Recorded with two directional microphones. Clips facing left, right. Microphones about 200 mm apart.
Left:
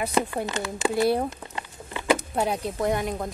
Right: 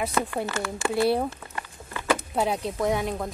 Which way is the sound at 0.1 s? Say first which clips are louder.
Left 2 dB; 15° left (ahead or behind).